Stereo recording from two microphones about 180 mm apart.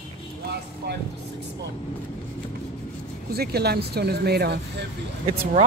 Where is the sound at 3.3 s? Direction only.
60° right (ahead or behind).